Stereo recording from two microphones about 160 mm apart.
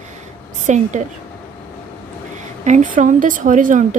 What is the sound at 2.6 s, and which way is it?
Speech, 50° right (ahead or behind).